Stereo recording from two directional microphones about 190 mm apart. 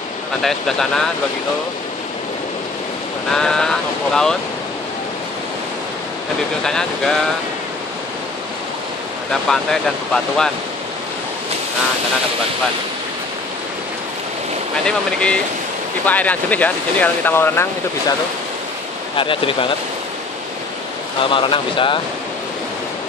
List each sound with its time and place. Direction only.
0.4 s speech: centre (ahead or behind)
3.3 s speech: 5° left (ahead or behind)
6.6 s speech: 5° left (ahead or behind)
9.3 s speech: centre (ahead or behind)
14.9 s speech: 5° left (ahead or behind)
19.1 s speech: 25° left (ahead or behind)
21.2 s speech: 25° left (ahead or behind)